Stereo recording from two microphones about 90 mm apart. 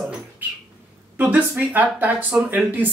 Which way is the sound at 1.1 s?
20° right (ahead or behind).